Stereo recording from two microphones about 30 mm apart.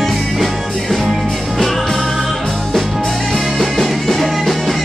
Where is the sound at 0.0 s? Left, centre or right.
Centre.